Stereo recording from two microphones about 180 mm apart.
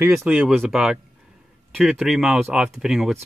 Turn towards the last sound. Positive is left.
turn(degrees=0)  # may be behind; listen again after turning